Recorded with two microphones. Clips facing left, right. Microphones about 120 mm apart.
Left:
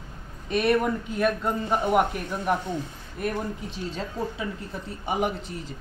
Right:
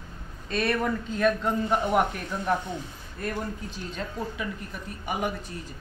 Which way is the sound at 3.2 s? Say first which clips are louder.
Left 3 dB; 20° left (ahead or behind).